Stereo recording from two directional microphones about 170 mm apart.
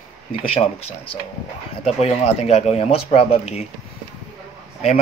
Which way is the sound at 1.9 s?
35° left (ahead or behind).